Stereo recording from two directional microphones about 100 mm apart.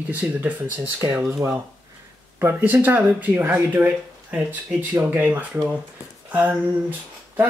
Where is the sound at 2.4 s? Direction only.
25° right (ahead or behind).